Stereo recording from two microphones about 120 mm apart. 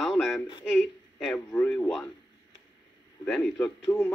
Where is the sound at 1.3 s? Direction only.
15° left (ahead or behind).